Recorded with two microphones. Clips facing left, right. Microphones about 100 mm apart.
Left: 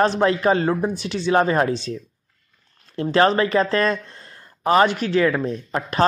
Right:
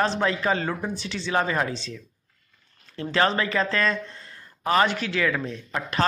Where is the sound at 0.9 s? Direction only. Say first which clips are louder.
Left 5 dB; 55° left (ahead or behind).